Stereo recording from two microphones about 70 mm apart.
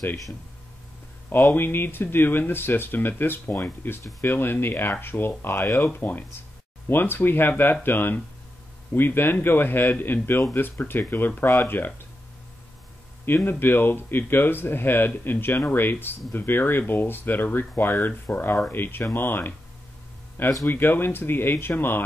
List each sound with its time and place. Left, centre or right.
1.5 s speech: left
13.2 s speech: left
20.6 s speech: left